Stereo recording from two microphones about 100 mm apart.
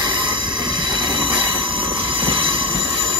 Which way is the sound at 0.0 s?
50° right (ahead or behind).